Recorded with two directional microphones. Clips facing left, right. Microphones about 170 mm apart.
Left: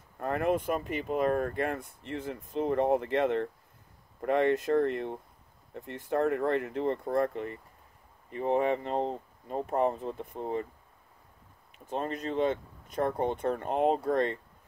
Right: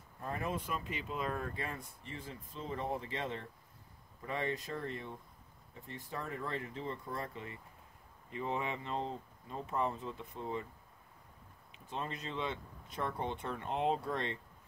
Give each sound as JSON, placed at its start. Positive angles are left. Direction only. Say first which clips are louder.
{"t": 0.2, "sound": "speech", "louder": "left 10 dB", "side_deg": 65}
{"t": 11.9, "sound": "speech", "louder": "left 9 dB", "side_deg": 50}